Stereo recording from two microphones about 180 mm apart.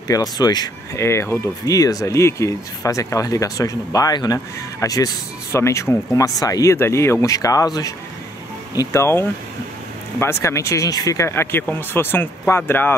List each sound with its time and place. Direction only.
0.1 s speech: 20° left (ahead or behind)